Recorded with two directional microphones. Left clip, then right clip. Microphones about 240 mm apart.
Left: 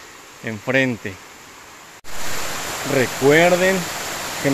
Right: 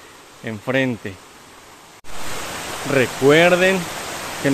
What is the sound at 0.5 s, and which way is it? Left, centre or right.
Speech, centre.